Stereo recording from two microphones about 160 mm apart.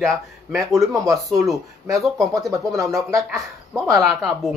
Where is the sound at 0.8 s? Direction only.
20° right (ahead or behind).